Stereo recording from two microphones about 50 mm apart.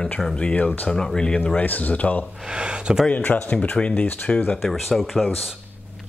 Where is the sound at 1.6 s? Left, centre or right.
Left.